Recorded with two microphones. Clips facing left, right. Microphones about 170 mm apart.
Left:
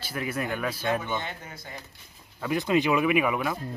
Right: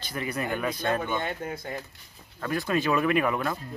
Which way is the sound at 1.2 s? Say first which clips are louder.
Right 7 dB; 55° right (ahead or behind).